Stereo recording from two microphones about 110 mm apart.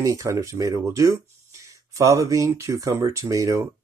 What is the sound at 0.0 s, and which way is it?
Speech, 30° right (ahead or behind).